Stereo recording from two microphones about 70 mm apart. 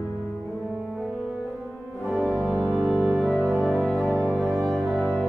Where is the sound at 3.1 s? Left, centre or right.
Centre.